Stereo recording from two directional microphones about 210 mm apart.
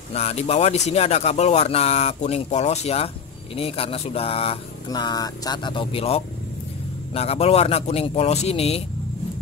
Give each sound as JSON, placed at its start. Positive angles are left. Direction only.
{"t": 0.1, "sound": "speech", "side_deg": 30}